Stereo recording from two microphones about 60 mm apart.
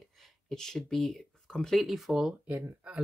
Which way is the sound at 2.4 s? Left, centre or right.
Right.